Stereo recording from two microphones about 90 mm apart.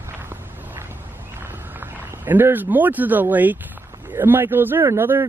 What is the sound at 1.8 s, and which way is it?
Speech, 20° right (ahead or behind).